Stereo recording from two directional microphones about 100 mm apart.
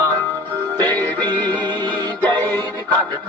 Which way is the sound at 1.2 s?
50° right (ahead or behind).